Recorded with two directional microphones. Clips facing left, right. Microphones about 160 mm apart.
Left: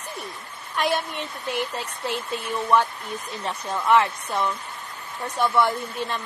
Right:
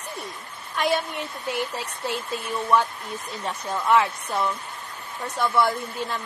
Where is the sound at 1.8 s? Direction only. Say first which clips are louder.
Left 1 dB; 5° right (ahead or behind).